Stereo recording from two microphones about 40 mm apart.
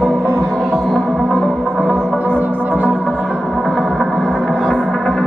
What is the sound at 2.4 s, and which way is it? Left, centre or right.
Music, right.